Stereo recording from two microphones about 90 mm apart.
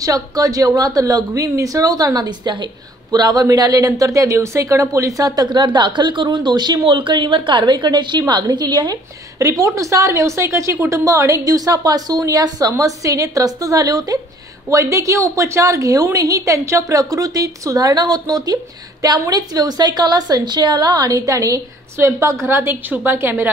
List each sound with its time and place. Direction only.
0.0 s speech: 40° right (ahead or behind)
9.4 s a woman's voice: 40° right (ahead or behind); by 23.5 s 25° right (ahead or behind)